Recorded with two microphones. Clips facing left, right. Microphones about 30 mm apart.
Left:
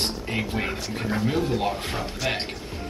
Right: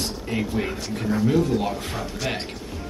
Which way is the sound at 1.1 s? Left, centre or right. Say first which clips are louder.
Right 4 dB; left.